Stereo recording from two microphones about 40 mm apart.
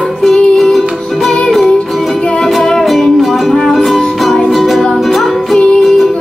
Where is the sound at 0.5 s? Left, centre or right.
Centre.